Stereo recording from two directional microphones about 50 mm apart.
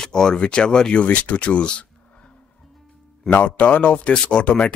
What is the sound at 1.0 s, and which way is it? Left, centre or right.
Speech, left.